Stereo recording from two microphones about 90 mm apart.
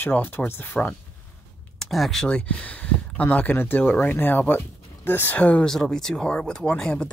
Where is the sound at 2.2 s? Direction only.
15° left (ahead or behind).